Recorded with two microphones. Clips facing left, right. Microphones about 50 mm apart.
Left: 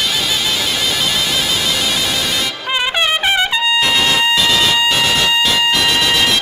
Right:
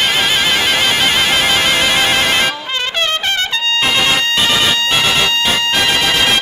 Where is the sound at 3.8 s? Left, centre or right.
Right.